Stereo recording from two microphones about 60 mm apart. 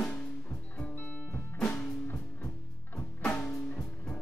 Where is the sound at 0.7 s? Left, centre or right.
Left.